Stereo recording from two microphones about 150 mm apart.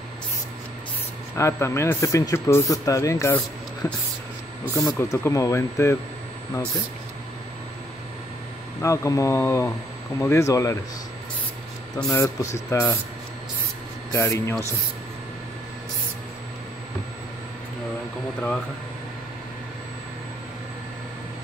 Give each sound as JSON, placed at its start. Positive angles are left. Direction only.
{"t": 1.3, "sound": "speech", "side_deg": 15}
{"t": 8.8, "sound": "speech", "side_deg": 20}
{"t": 12.1, "sound": "speech", "side_deg": 20}
{"t": 14.1, "sound": "speech", "side_deg": 20}